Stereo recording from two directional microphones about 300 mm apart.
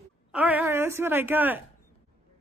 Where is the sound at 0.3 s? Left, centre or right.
Centre.